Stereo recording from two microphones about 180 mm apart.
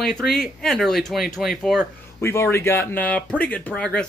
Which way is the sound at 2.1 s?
15° left (ahead or behind).